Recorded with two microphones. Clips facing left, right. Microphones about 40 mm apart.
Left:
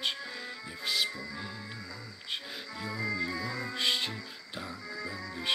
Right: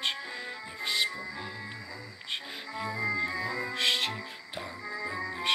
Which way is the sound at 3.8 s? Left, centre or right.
Right.